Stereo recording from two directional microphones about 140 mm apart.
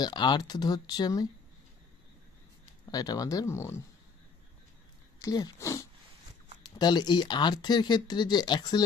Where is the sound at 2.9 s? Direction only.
25° left (ahead or behind).